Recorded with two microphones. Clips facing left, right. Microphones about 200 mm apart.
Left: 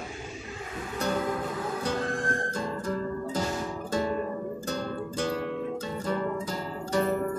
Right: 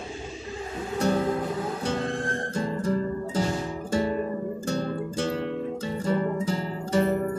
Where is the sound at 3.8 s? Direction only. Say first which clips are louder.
Right 3 dB; 30° right (ahead or behind).